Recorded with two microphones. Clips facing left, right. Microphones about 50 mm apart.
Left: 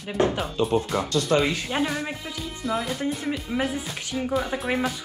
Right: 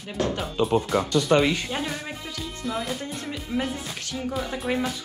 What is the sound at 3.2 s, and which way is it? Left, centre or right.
Speech, centre.